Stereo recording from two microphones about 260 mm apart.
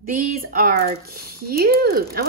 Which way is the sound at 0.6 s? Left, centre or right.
Right.